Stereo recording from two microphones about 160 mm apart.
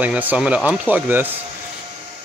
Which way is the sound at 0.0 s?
10° right (ahead or behind).